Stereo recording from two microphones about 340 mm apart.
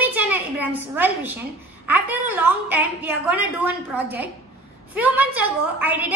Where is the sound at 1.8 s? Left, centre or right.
Centre.